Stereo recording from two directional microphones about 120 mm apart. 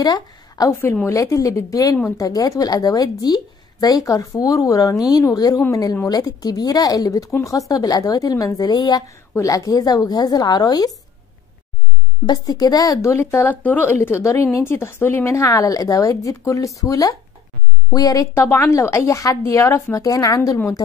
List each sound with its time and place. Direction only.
0.0 s a woman's voice: 30° left (ahead or behind)
12.3 s speech: 30° left (ahead or behind)